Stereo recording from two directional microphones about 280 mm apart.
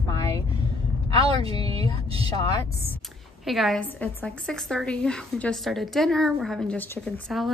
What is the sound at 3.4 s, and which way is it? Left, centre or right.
A woman's voice, centre.